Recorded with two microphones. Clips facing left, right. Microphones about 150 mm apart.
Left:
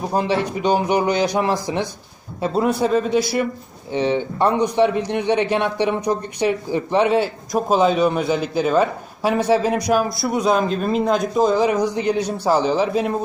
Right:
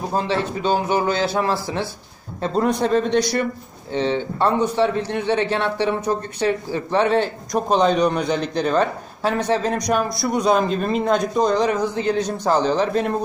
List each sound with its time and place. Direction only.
0.1 s a man's voice: 15° left (ahead or behind)
2.4 s a man's voice: 5° left (ahead or behind)